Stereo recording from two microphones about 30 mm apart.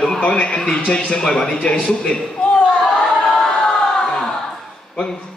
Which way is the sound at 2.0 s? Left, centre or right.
Left.